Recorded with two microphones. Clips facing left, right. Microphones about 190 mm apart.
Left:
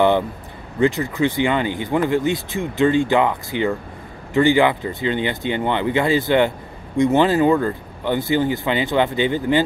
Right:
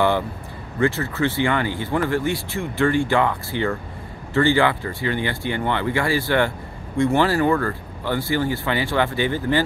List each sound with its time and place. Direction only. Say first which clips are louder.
0.7 s speech: left 3 dB; 15° left (ahead or behind)